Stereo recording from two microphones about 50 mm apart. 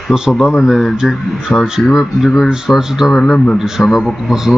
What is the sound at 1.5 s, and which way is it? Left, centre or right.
Speech, left.